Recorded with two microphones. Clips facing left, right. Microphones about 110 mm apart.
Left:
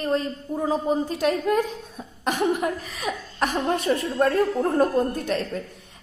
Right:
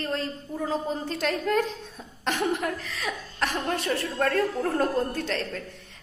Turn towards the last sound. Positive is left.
turn(degrees=15)  # may be behind; listen again after turning